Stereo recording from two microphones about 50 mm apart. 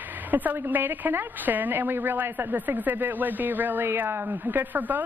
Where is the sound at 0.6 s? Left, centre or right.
Right.